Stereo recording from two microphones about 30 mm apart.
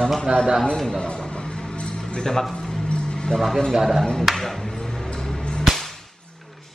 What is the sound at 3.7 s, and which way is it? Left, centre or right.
Speech, centre.